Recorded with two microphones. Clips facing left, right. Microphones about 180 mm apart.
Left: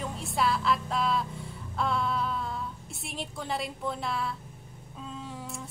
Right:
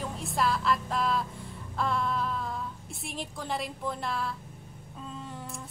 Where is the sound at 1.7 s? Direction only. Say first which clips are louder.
Even; centre (ahead or behind).